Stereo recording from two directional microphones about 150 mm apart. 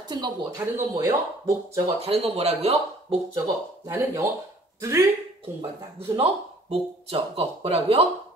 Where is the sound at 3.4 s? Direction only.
20° right (ahead or behind).